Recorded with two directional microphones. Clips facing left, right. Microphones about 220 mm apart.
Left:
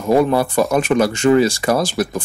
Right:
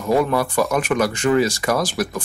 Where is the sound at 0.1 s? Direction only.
25° left (ahead or behind).